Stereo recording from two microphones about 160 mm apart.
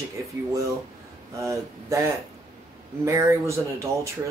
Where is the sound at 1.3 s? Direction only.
20° right (ahead or behind).